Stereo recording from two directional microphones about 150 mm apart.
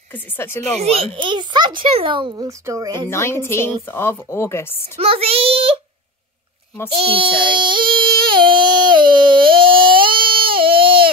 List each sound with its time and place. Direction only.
0.1 s a woman's voice: 15° left (ahead or behind)
0.7 s a child's voice: 40° right (ahead or behind)
3.1 s a woman's voice: 15° left (ahead or behind)
4.9 s child singing: 40° right (ahead or behind)
6.9 s child singing: 35° right (ahead or behind)